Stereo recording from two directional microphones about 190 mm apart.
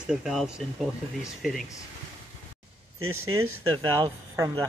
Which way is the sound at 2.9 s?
90° right.